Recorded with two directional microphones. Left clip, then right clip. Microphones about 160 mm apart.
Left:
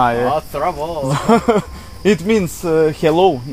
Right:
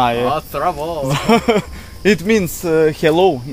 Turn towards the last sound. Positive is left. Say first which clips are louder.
# even
turn(degrees=20)  # may be behind; listen again after turning